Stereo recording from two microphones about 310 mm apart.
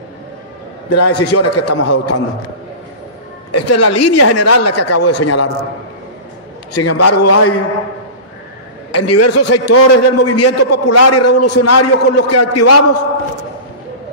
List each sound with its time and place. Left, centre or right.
0.8 s a man's voice: left
3.5 s a man's voice: left
6.7 s a man's voice: left
8.9 s a man's voice: left